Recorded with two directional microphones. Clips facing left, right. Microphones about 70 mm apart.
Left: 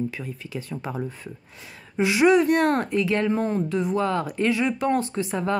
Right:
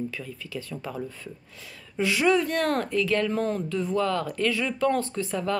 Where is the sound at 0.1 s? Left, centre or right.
Left.